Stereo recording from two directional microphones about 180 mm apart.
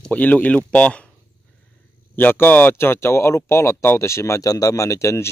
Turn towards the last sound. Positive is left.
turn(degrees=15)  # may be behind; listen again after turning